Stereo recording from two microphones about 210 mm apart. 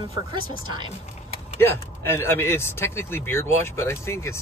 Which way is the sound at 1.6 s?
10° left (ahead or behind).